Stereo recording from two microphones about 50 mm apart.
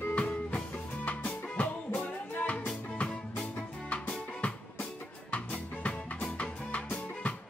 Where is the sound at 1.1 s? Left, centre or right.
Left.